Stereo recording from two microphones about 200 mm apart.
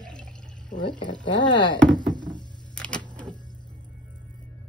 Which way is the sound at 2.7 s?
5° left (ahead or behind).